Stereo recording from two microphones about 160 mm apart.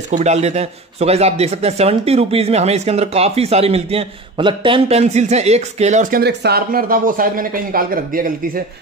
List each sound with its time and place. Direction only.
0.1 s speech: 45° right (ahead or behind); by 8.3 s 65° right (ahead or behind)